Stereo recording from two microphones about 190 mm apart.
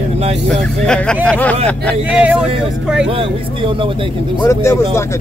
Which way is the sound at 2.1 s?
5° right (ahead or behind).